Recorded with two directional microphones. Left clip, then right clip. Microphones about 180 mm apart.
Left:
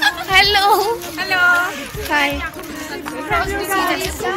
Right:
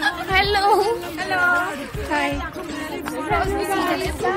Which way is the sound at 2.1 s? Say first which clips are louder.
Left 5 dB; 25° left (ahead or behind).